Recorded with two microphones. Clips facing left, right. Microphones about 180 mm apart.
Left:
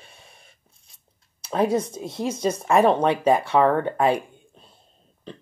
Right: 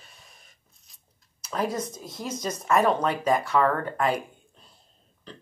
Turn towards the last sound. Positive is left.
turn(degrees=25)  # may be behind; listen again after turning